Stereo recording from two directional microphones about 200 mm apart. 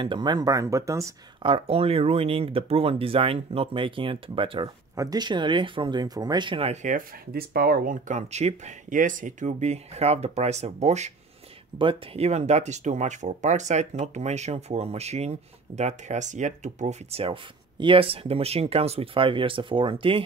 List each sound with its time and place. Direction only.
0.0 s speech: 20° right (ahead or behind)